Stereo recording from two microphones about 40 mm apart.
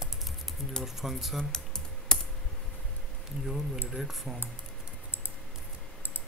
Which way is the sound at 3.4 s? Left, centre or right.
Centre.